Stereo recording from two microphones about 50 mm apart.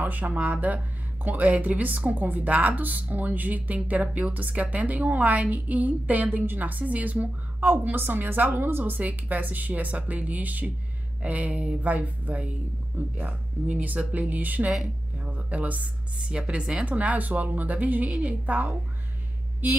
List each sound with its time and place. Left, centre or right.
0.0 s a woman's voice: right